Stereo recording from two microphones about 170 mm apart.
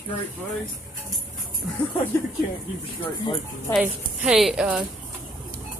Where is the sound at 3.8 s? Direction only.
5° right (ahead or behind).